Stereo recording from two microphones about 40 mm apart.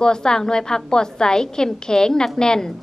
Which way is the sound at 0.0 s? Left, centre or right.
Centre.